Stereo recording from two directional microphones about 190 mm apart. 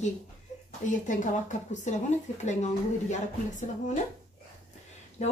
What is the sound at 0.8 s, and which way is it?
Speech, 40° left (ahead or behind).